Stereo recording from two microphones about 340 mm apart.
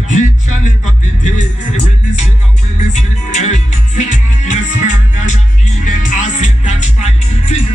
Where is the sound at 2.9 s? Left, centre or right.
Left.